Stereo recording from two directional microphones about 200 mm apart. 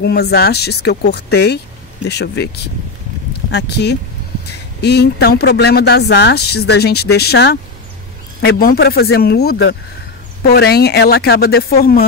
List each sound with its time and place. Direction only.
0.0 s speech: 55° left (ahead or behind)